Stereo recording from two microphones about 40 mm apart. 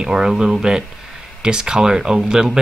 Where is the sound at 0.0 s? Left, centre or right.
Centre.